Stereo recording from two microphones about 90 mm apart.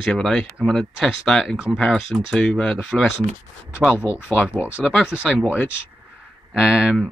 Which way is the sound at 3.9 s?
10° right (ahead or behind).